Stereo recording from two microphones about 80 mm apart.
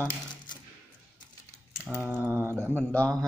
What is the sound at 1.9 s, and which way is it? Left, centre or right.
Typing, right.